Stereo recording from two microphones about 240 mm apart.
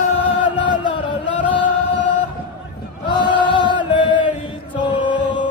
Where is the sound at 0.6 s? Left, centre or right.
Centre.